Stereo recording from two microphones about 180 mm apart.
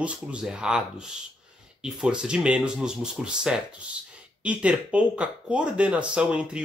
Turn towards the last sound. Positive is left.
turn(degrees=-5)  # may be behind; listen again after turning